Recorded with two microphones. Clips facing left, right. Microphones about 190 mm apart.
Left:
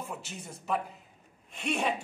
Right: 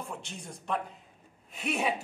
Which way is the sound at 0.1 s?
5° left (ahead or behind).